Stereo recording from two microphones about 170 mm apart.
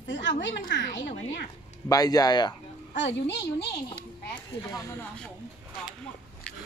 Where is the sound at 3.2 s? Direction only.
80° left.